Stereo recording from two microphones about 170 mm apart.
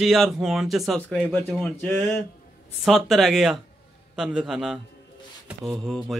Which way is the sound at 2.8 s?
Centre (ahead or behind).